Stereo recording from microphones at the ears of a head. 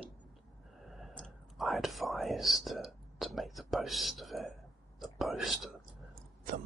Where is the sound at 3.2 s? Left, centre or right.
Centre.